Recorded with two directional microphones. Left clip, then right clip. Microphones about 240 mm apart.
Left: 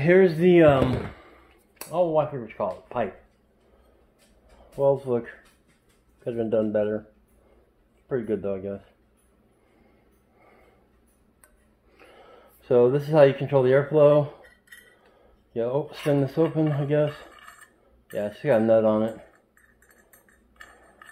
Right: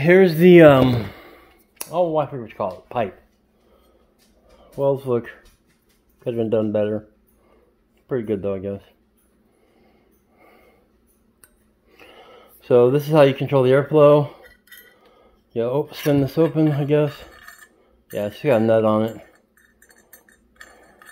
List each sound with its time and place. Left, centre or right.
0.0 s speech: right
1.8 s speech: right
4.7 s speech: right
8.1 s speech: right
11.9 s speech: right
15.5 s speech: right